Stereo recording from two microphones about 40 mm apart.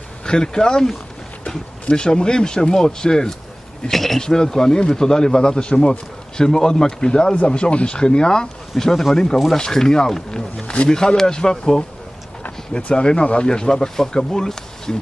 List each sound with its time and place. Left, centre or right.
0.2 s speech: centre
1.9 s speech: left
3.8 s speech: centre
4.2 s a man's voice: centre